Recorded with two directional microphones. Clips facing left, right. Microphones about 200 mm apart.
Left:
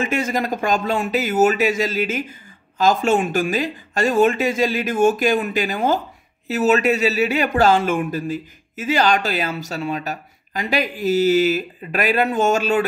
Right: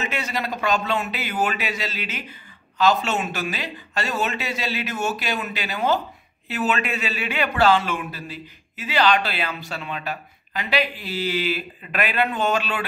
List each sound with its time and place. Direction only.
0.0 s speech: 45° left (ahead or behind)